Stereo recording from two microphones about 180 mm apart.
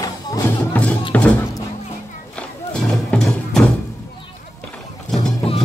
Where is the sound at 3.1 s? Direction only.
5° left (ahead or behind).